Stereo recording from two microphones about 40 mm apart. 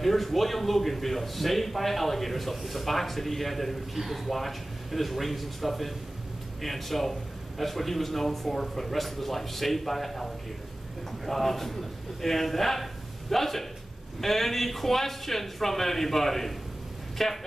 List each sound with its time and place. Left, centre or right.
0.0 s a man's voice: centre